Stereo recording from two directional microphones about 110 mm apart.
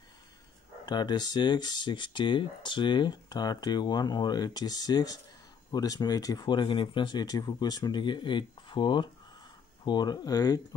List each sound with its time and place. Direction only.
0.8 s speech: 40° left (ahead or behind)